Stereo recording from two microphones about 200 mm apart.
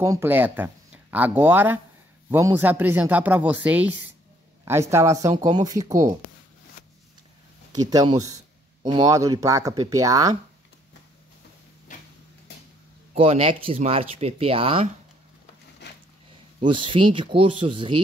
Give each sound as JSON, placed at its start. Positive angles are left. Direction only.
{"t": 0.0, "sound": "speech", "side_deg": -15}
{"t": 6.8, "sound": "a sound", "side_deg": 40}
{"t": 7.7, "sound": "speech", "side_deg": -20}
{"t": 11.9, "sound": "a sound", "side_deg": 40}
{"t": 13.1, "sound": "speech", "side_deg": -30}
{"t": 16.6, "sound": "speech", "side_deg": -25}